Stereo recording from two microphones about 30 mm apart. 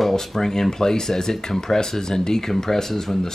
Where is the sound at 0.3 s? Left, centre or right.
Centre.